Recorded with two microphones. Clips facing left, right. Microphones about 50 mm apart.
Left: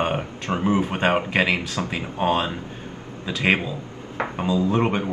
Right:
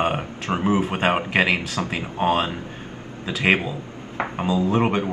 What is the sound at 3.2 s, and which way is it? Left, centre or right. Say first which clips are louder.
Speech: right 1 dB; centre.